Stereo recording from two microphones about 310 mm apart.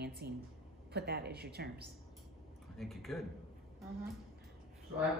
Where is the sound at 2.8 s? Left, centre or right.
Centre.